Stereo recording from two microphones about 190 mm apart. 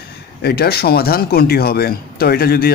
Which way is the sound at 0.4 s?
55° left (ahead or behind).